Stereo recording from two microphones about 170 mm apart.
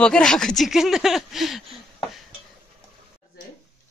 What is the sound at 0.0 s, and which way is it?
Speech, 5° left (ahead or behind).